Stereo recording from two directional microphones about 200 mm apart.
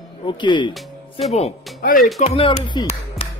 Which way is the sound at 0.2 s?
25° left (ahead or behind).